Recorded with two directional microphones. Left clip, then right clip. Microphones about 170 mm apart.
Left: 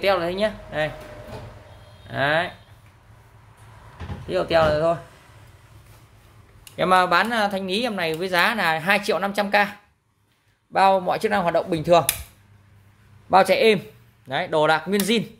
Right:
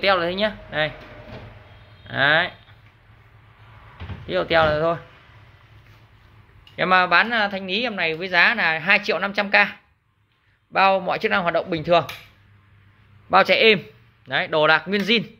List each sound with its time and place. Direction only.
0.0 s speech: 5° left (ahead or behind)
2.0 s speech: 10° left (ahead or behind)
4.3 s speech: 5° left (ahead or behind)
6.7 s speech: 25° left (ahead or behind)
13.3 s speech: 25° left (ahead or behind)